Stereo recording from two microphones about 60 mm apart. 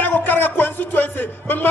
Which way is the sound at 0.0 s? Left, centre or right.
Left.